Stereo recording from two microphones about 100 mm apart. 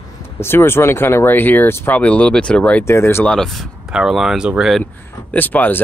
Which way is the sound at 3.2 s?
5° left (ahead or behind).